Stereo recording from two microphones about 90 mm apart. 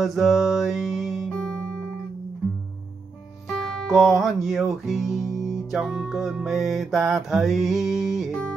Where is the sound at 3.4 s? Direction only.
Centre (ahead or behind).